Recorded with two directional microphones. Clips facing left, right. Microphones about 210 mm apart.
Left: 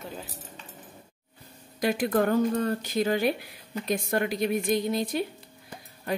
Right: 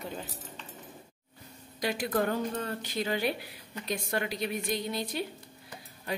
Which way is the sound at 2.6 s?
45° left (ahead or behind).